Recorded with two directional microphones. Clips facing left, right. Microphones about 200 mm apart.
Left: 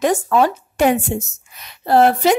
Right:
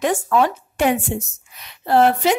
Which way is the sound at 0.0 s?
40° left (ahead or behind).